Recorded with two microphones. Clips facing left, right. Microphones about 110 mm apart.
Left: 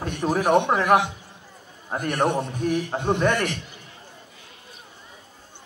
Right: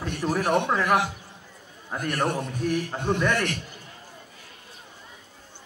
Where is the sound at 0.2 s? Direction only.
40° left (ahead or behind).